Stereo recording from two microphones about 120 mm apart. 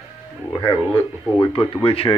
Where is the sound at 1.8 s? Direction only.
50° left (ahead or behind).